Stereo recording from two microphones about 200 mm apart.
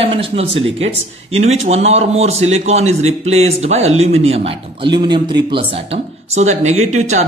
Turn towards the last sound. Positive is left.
turn(degrees=-35)  # may be behind; listen again after turning